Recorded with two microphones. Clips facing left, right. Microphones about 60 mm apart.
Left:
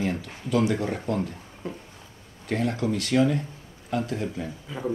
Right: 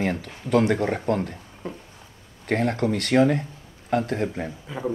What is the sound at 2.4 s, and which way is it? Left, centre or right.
Speech, right.